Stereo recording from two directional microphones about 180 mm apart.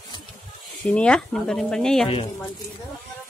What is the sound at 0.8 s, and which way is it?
Speech, 5° left (ahead or behind).